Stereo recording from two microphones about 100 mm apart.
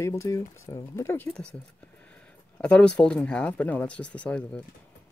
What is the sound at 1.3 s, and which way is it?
Speech, 5° left (ahead or behind).